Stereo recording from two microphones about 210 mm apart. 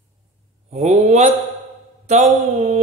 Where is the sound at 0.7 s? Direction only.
30° right (ahead or behind).